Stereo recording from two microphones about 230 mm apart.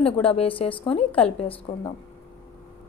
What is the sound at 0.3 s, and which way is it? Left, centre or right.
Speech, left.